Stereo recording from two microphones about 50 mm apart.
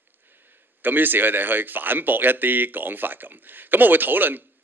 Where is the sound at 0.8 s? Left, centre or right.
Right.